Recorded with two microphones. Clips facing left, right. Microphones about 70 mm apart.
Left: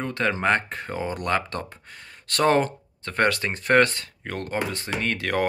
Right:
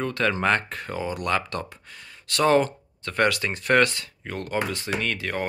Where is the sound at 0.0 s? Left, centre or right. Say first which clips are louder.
Even; left.